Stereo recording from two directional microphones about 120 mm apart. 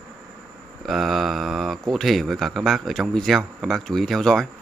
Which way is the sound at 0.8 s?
Centre (ahead or behind).